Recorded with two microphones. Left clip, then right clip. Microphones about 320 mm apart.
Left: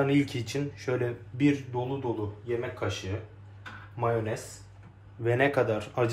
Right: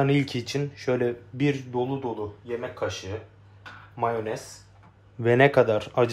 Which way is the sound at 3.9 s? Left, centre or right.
Right.